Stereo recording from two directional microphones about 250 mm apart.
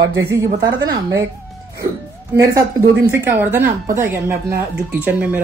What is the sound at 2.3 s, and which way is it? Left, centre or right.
Speech, centre.